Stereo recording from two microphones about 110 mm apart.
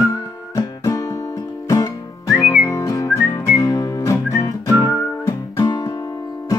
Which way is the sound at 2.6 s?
30° left (ahead or behind).